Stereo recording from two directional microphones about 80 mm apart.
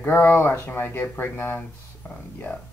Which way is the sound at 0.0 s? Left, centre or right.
Left.